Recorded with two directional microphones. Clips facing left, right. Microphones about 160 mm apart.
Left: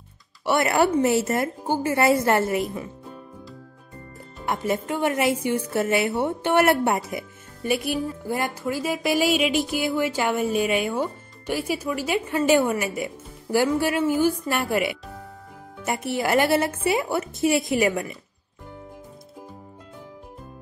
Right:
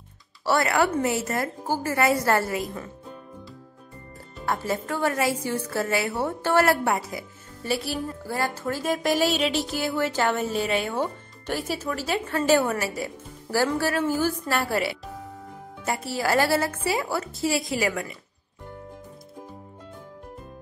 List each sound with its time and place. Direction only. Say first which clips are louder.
0.5 s a woman's voice: left 2 dB; 25° left (ahead or behind)
4.5 s a woman's voice: left 2 dB; 20° left (ahead or behind)